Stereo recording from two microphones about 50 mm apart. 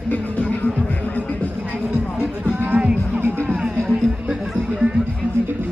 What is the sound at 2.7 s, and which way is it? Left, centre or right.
Music, right.